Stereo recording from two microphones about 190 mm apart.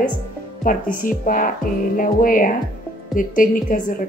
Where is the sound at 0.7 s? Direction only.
45° left (ahead or behind).